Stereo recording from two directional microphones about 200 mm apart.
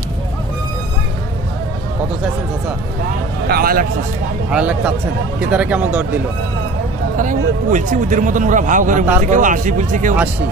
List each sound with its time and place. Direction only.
3.4 s a man's voice: 50° right (ahead or behind)
4.5 s a man's voice: 5° right (ahead or behind)
7.2 s speech: 40° right (ahead or behind)